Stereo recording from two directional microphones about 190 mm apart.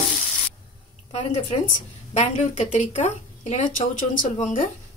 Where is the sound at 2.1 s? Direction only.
35° left (ahead or behind).